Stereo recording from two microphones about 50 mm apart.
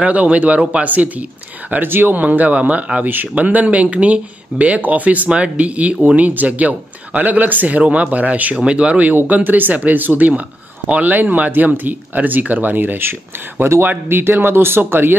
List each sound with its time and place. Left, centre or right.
0.0 s speech: right
9.1 s speech: right